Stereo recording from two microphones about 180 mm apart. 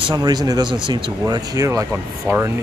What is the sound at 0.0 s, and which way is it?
Speech, 25° right (ahead or behind).